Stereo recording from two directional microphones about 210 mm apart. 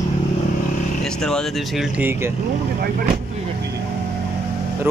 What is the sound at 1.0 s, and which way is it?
Speech, 5° left (ahead or behind).